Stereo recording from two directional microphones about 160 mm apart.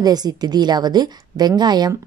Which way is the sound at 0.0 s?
25° right (ahead or behind).